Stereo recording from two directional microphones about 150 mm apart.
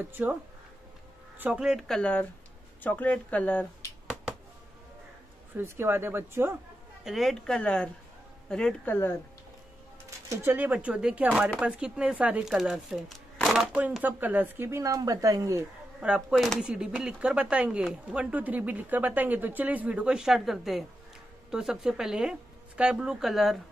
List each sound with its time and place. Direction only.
0.0 s speech: 10° right (ahead or behind)
1.4 s speech: 5° right (ahead or behind); by 3.9 s 10° left (ahead or behind)
5.6 s speech: 15° right (ahead or behind)
7.1 s speech: centre (ahead or behind)
10.0 s speech: 20° right (ahead or behind)
16.0 s speech: 5° right (ahead or behind)